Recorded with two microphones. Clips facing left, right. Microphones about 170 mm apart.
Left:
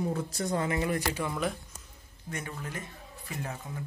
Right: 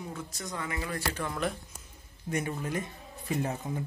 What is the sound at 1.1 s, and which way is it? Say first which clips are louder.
Speech: left 1 dB; 5° left (ahead or behind).